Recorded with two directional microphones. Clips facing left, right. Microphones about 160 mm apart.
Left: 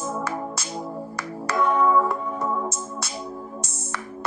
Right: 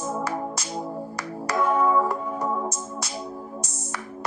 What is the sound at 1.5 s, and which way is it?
Music, 5° right (ahead or behind).